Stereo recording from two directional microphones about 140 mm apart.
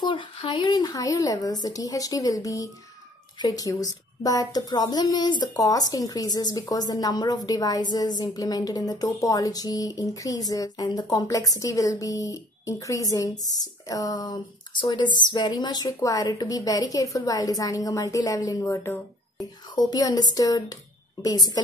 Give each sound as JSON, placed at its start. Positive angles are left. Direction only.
{"t": 0.0, "sound": "speech", "side_deg": 35}